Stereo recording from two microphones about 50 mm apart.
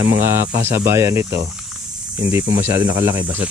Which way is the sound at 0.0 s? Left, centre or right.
Right.